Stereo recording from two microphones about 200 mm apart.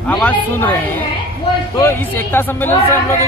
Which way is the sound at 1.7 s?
10° left (ahead or behind).